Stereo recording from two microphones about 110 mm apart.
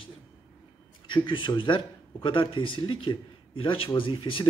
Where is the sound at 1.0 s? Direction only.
45° left (ahead or behind).